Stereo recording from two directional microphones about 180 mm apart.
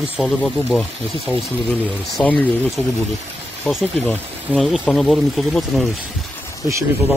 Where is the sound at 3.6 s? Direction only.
Centre (ahead or behind).